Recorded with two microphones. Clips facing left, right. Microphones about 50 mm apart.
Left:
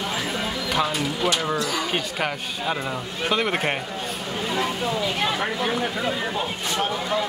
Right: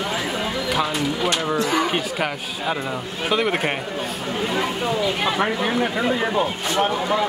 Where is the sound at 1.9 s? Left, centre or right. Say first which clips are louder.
Right 2 dB; centre.